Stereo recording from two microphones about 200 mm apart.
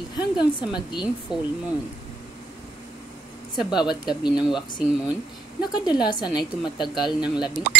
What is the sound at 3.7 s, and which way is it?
Speech, 20° left (ahead or behind).